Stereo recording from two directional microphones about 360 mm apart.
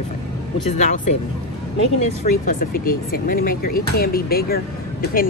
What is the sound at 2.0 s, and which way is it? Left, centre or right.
Speech, left.